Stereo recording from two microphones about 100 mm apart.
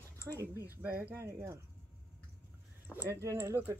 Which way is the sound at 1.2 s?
30° right (ahead or behind).